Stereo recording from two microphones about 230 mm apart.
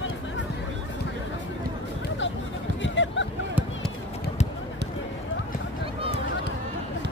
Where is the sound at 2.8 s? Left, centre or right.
Left.